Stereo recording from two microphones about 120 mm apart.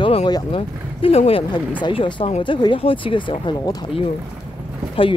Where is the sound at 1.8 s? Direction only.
45° left (ahead or behind).